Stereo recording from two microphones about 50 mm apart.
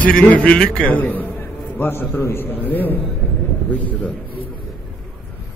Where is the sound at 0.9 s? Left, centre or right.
Left.